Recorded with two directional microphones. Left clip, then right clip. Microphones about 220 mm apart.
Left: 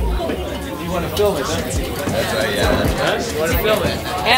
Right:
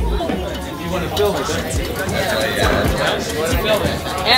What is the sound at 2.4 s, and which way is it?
Speech, centre (ahead or behind).